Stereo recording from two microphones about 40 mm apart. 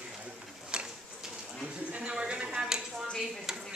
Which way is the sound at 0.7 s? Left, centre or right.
Right.